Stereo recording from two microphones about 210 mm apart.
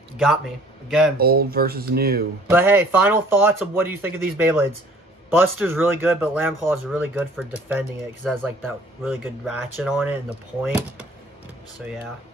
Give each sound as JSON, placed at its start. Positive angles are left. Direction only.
{"t": 0.8, "sound": "speech", "side_deg": 0}
{"t": 1.1, "sound": "speech", "side_deg": -45}
{"t": 2.5, "sound": "speech", "side_deg": -10}
{"t": 8.2, "sound": "speech", "side_deg": 0}